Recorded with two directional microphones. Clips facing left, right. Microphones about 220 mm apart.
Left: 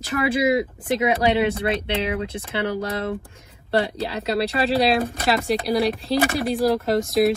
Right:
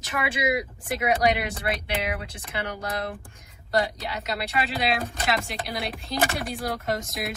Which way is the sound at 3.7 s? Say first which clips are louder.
Left 4 dB; 30° left (ahead or behind).